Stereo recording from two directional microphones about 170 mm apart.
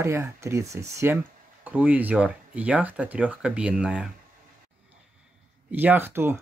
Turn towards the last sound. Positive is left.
turn(degrees=-15)  # may be behind; listen again after turning